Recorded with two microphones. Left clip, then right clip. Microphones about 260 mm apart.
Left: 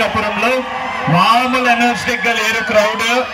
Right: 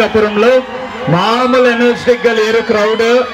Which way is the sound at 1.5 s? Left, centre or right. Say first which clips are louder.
Right 4 dB; right.